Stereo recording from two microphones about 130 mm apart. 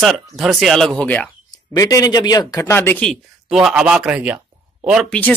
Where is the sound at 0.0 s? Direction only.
Centre (ahead or behind).